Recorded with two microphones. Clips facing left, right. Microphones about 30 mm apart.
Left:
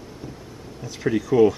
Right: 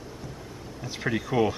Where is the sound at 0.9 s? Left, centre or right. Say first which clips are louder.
Left 5 dB; centre.